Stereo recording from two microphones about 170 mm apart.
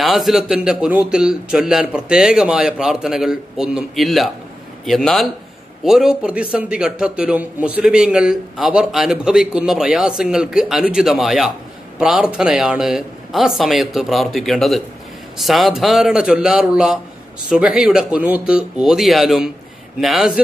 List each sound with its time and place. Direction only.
0.0 s a man's voice: centre (ahead or behind)